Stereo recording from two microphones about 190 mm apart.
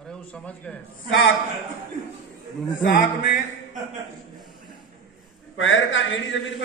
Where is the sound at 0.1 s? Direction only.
5° left (ahead or behind).